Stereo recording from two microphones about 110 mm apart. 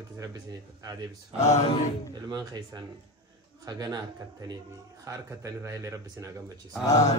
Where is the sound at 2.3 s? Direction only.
35° right (ahead or behind).